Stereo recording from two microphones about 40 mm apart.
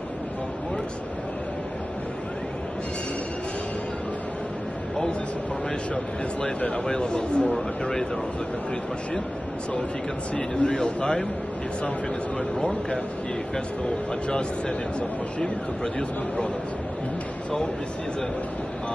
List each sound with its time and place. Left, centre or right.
6.9 s speech: left
10.3 s speech: left
12.5 s speech: left
15.0 s speech: left